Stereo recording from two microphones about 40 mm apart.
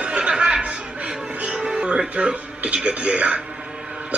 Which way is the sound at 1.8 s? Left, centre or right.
Right.